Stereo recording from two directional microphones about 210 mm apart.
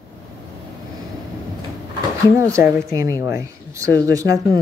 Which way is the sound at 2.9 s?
15° right (ahead or behind).